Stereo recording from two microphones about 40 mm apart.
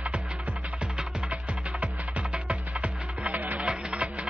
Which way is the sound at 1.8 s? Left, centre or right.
Right.